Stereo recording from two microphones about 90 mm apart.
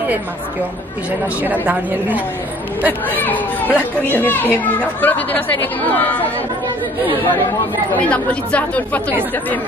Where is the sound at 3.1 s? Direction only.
20° left (ahead or behind).